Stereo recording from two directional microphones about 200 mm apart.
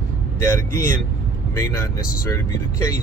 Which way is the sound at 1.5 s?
15° left (ahead or behind).